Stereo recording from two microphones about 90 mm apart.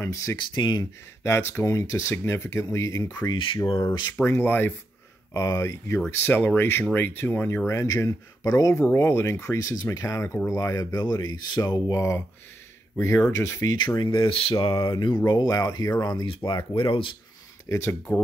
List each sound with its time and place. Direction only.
0.0 s speech: 35° left (ahead or behind)
0.6 s speech: 50° left (ahead or behind)
1.2 s speech: 30° left (ahead or behind)
3.6 s speech: 70° left (ahead or behind)
4.2 s speech: 25° left (ahead or behind)
5.3 s speech: 35° left (ahead or behind)
8.8 s speech: 30° left (ahead or behind)
13.3 s speech: 35° left (ahead or behind)
13.7 s speech: 55° left (ahead or behind)
16.4 s speech: 65° left (ahead or behind)
17.6 s speech: 35° left (ahead or behind)